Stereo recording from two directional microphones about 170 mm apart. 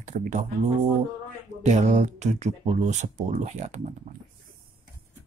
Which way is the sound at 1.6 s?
45° right (ahead or behind).